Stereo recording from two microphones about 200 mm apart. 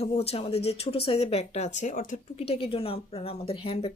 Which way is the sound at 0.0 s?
30° left (ahead or behind).